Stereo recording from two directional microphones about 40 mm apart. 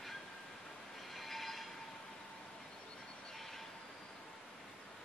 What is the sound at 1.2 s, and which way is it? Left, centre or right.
Train, centre.